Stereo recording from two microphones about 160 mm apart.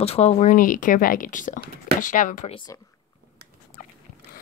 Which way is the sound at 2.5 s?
25° left (ahead or behind).